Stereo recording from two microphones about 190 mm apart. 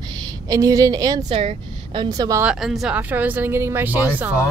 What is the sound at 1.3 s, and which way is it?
Speech, 30° right (ahead or behind).